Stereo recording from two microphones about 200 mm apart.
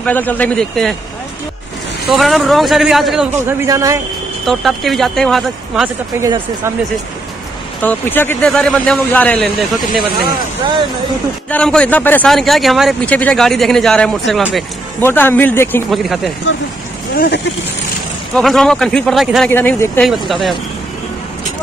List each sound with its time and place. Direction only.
0.0 s a man's voice: 10° left (ahead or behind)
2.0 s a man's voice: centre (ahead or behind)
3.4 s speech: 15° right (ahead or behind)
4.5 s a man's voice: centre (ahead or behind)
6.2 s speech: 15° right (ahead or behind)
7.8 s a man's voice: 10° left (ahead or behind)
11.5 s a man's voice: 5° left (ahead or behind)
15.0 s a man's voice: 10° left (ahead or behind)
15.9 s a man's voice: centre (ahead or behind)
17.1 s speech: 45° left (ahead or behind)
18.3 s a man's voice: centre (ahead or behind)